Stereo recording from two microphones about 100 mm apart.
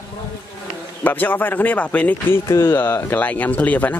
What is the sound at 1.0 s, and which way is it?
Speech, 20° left (ahead or behind).